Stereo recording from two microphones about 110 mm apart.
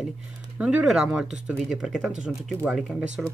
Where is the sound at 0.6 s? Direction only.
10° right (ahead or behind).